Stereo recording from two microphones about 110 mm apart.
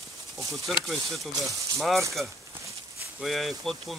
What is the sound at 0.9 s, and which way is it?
Speech, centre (ahead or behind).